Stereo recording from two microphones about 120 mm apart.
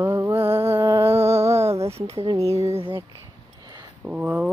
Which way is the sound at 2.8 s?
45° right (ahead or behind).